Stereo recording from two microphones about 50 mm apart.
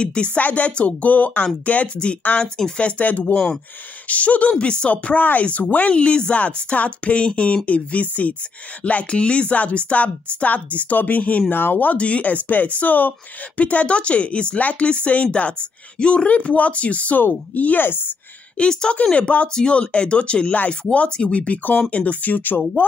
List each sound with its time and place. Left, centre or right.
0.0 s speech: left
5.9 s speech: centre
17.8 s a woman's voice: left
18.6 s speech: centre; by 22.6 s left